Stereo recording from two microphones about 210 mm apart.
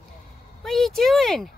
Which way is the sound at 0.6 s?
Centre (ahead or behind).